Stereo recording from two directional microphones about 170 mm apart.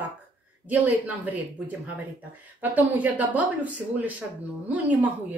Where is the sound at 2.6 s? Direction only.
10° right (ahead or behind).